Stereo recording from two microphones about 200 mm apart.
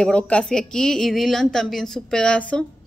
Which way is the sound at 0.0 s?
5° left (ahead or behind).